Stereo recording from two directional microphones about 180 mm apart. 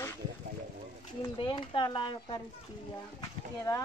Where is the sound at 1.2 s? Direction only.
25° left (ahead or behind).